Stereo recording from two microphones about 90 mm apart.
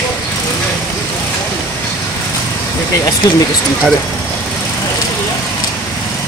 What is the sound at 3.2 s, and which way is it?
Speech, 40° left (ahead or behind).